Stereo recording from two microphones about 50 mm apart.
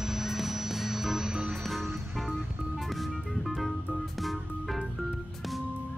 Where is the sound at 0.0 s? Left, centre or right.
Centre.